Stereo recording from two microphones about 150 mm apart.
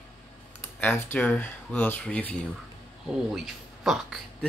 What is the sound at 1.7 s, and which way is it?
Speech, 10° left (ahead or behind).